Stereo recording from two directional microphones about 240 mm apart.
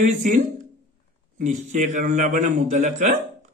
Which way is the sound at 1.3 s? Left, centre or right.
Right.